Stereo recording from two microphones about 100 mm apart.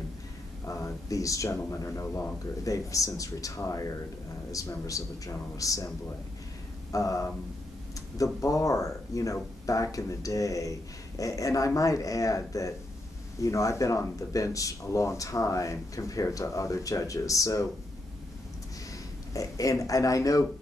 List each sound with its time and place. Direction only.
0.7 s speech: 35° left (ahead or behind)
6.9 s speech: 35° left (ahead or behind)
19.3 s speech: 35° left (ahead or behind)